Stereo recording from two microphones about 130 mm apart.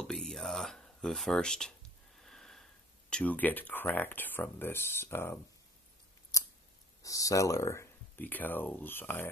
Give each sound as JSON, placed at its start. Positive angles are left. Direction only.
{"t": 0.0, "sound": "a sound", "side_deg": 5}
{"t": 2.2, "sound": "speech", "side_deg": 0}
{"t": 7.0, "sound": "speech", "side_deg": 25}